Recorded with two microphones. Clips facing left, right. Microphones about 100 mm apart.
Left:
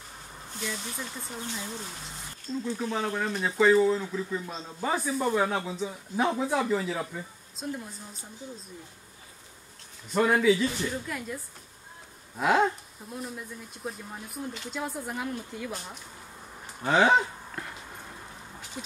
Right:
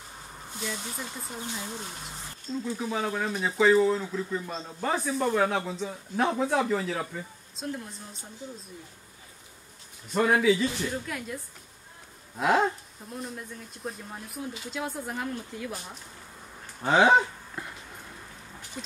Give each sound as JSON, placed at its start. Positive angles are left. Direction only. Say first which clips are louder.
{"t": 0.6, "sound": "speech", "louder": "even", "side_deg": -10}
{"t": 10.1, "sound": "speech", "louder": "even", "side_deg": 0}
{"t": 12.4, "sound": "speech", "louder": "even", "side_deg": 0}
{"t": 16.9, "sound": "speech", "louder": "right 2 dB", "side_deg": -15}